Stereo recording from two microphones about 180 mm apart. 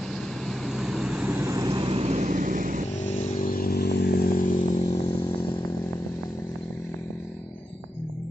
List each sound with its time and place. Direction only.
0.5 s vehicle: centre (ahead or behind)
1.4 s vehicle: 20° right (ahead or behind); by 2.8 s 45° right (ahead or behind)
3.1 s motorcycle: 50° left (ahead or behind)
4.8 s motorcycle: 20° left (ahead or behind)